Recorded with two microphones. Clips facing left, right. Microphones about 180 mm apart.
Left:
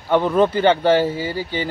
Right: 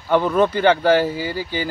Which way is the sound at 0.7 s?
30° left (ahead or behind).